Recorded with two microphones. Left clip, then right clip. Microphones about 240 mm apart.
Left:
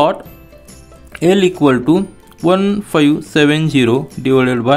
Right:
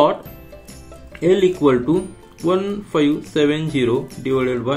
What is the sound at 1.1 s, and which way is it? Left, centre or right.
Speech, left.